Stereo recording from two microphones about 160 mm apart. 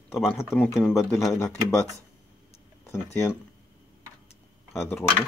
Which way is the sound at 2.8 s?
15° left (ahead or behind).